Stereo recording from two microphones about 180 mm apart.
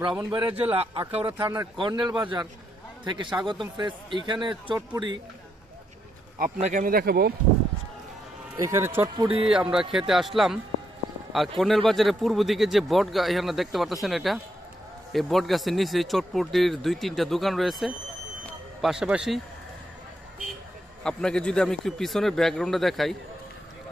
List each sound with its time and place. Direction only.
0.0 s speech: 25° right (ahead or behind)
6.4 s speech: 50° right (ahead or behind)
8.5 s speech: 15° right (ahead or behind)
9.1 s speech: 30° right (ahead or behind)
9.5 s speech: 5° right (ahead or behind)
21.0 s speech: 5° left (ahead or behind)